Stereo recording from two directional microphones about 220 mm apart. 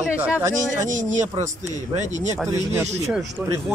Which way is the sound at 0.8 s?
35° right (ahead or behind).